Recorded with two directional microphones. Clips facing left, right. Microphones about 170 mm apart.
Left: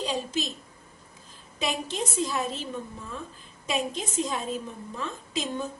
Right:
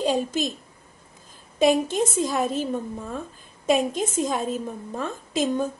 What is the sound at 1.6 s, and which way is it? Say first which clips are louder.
A woman's voice: right 11 dB; 50° right (ahead or behind).